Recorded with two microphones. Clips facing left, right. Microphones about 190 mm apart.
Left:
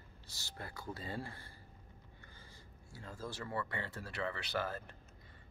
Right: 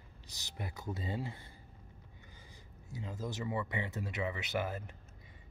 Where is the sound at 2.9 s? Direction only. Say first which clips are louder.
Right 5 dB; 20° right (ahead or behind).